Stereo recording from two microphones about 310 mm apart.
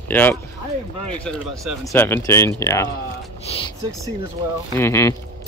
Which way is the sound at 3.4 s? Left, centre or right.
Centre.